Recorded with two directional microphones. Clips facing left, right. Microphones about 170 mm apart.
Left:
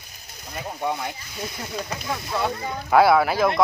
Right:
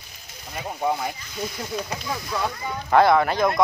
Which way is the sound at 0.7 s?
5° right (ahead or behind).